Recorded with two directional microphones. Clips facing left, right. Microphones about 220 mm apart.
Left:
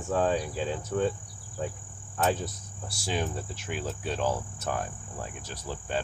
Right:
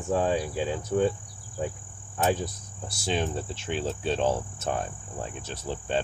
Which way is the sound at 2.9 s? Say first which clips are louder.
Right 3 dB; 25° right (ahead or behind).